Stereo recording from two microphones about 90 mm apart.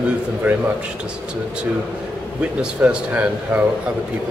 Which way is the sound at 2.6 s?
10° right (ahead or behind).